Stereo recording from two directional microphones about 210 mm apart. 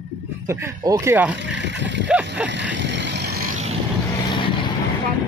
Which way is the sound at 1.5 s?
55° right (ahead or behind).